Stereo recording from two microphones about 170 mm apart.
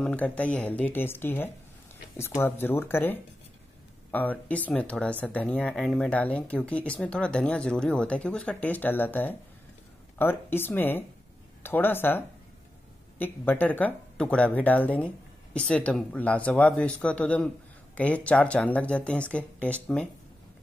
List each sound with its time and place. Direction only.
0.0 s speech: 10° left (ahead or behind)
13.2 s speech: 10° left (ahead or behind)